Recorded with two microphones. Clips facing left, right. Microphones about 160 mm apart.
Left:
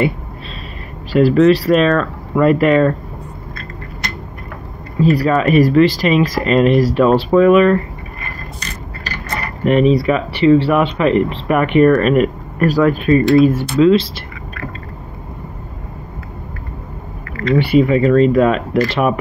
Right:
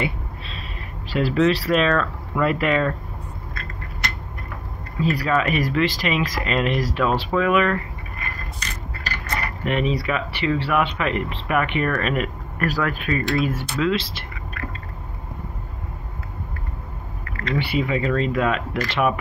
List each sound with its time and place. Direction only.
1.1 s speech: 45° left (ahead or behind)
5.1 s speech: 35° left (ahead or behind)
9.7 s speech: 35° left (ahead or behind)
12.5 s speech: 30° left (ahead or behind)
17.6 s speech: 45° left (ahead or behind)